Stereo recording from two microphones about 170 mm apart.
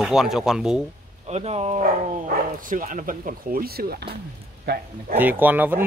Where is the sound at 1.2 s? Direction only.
40° right (ahead or behind); by 4.2 s 65° right (ahead or behind).